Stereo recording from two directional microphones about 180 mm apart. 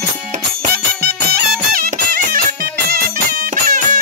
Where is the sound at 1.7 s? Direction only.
55° right (ahead or behind).